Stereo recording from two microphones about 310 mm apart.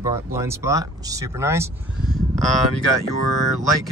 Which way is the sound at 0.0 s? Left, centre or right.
Centre.